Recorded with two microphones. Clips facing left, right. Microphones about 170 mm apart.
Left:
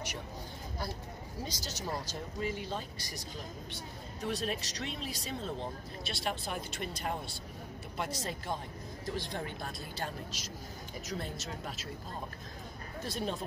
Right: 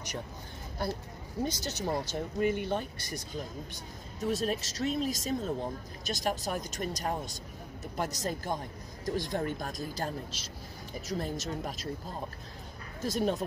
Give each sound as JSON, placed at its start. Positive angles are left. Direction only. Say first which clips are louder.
{"t": 1.4, "sound": "speech", "louder": "right 8 dB", "side_deg": -60}
{"t": 3.7, "sound": "speech", "louder": "left 1 dB", "side_deg": -40}
{"t": 13.0, "sound": "speech", "louder": "right 7 dB", "side_deg": -45}